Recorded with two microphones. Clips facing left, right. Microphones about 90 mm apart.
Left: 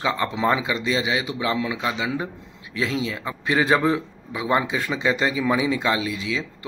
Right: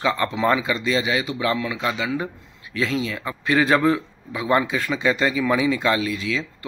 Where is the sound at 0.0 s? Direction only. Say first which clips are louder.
Right 1 dB; 15° left (ahead or behind).